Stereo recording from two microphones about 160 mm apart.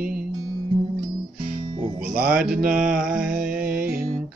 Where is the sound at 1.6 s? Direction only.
35° right (ahead or behind).